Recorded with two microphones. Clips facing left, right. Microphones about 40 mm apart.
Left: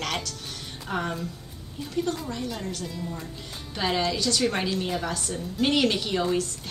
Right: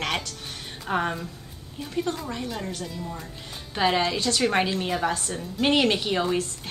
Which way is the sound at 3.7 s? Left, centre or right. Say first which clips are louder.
Right 3 dB; right.